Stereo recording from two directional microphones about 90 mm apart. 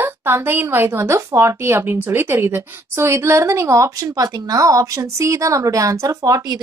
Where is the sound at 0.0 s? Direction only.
25° right (ahead or behind).